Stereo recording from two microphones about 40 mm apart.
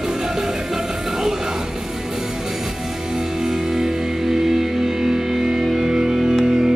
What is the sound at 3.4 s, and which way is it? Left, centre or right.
Music, centre.